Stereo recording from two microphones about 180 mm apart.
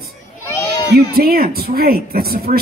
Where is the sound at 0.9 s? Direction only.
55° right (ahead or behind).